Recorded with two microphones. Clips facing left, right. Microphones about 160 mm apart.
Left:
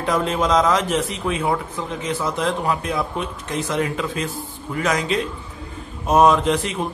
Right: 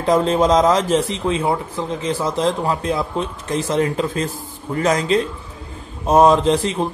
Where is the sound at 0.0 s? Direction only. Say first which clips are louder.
Right 5 dB; 35° right (ahead or behind).